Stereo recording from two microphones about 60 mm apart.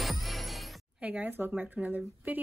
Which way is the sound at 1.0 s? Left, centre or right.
Centre.